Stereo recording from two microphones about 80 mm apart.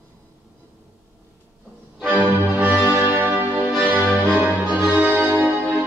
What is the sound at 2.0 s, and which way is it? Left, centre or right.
Music, right.